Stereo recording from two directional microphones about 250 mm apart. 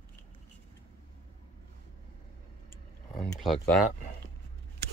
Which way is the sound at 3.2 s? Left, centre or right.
Centre.